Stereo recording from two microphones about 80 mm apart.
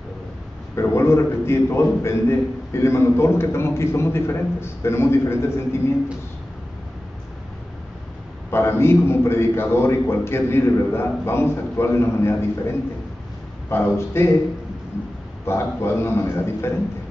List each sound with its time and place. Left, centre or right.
0.7 s a man's voice: left
8.5 s a man's voice: left
15.4 s a man's voice: left